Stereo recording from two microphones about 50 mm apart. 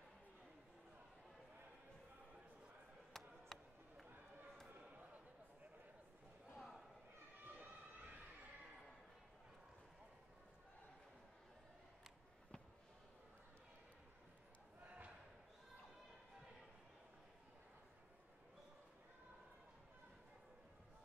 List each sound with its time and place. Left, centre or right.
3.1 s chop: centre
6.5 s a sound: centre
7.4 s siren: right